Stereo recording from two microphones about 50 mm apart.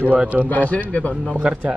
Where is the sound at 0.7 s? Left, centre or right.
Left.